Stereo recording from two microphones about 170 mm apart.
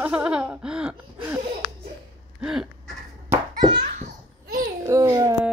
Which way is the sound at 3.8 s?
55° right (ahead or behind).